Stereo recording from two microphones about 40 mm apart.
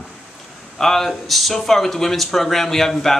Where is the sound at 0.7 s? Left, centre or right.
Centre.